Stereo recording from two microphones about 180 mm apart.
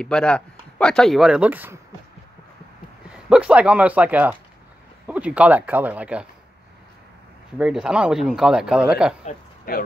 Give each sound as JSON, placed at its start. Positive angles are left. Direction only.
{"t": 0.0, "sound": "a man's voice", "side_deg": 5}
{"t": 3.1, "sound": "speech", "side_deg": -5}
{"t": 7.5, "sound": "a man's voice", "side_deg": -5}
{"t": 9.2, "sound": "speech", "side_deg": 55}